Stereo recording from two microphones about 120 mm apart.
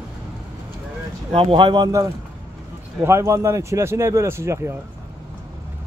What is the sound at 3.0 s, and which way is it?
Speech, 25° right (ahead or behind).